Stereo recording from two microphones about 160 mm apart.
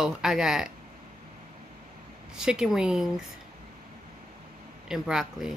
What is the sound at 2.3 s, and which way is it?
Speech, 5° right (ahead or behind).